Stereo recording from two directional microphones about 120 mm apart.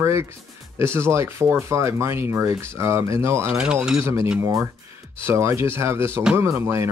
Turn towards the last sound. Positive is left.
turn(degrees=-20)  # may be behind; listen again after turning